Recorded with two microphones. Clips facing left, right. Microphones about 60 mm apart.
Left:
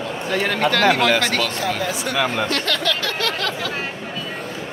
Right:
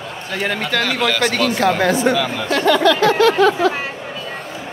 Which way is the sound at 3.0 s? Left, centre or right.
Right.